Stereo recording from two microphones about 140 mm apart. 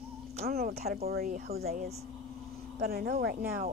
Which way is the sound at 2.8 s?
90° right.